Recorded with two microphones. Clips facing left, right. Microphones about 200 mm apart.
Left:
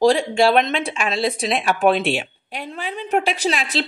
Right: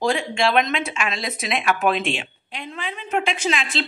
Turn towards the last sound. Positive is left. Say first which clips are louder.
# left 2 dB
turn(degrees=40)  # may be behind; listen again after turning